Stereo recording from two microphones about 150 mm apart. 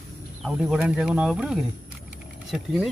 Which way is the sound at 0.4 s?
5° right (ahead or behind).